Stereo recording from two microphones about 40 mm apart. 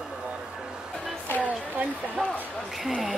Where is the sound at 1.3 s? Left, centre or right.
Left.